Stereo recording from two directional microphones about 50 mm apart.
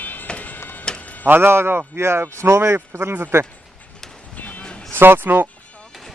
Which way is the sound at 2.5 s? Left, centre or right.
Right.